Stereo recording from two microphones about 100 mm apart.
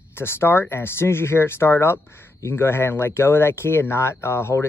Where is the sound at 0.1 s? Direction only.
25° left (ahead or behind).